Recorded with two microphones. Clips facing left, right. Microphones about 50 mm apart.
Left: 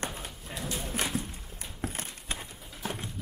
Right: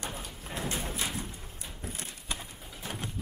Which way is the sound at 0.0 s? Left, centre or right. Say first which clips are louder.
Left 2 dB; left.